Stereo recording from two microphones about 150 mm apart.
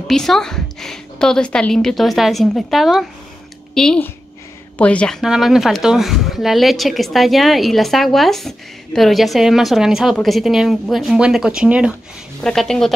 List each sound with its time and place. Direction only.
0.1 s a woman's voice: 5° left (ahead or behind)
12.4 s a woman's voice: 5° left (ahead or behind)